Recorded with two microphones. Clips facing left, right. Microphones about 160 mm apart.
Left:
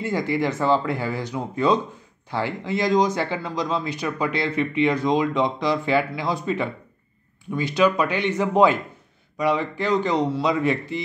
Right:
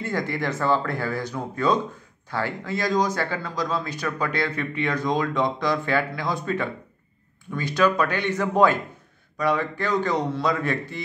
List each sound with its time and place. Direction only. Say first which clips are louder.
0.0 s speech: left 4 dB; 10° left (ahead or behind)
7.7 s speech: left 1 dB; 15° left (ahead or behind)